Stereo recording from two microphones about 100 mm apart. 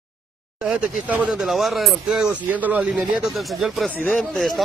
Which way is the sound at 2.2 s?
15° right (ahead or behind).